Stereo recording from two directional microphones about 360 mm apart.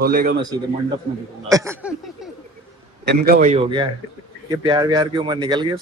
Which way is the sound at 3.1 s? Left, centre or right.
Right.